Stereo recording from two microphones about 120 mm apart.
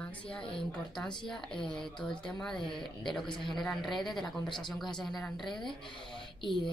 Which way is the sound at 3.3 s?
40° left (ahead or behind).